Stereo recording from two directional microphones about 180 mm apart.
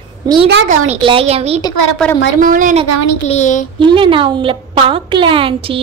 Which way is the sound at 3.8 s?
25° right (ahead or behind).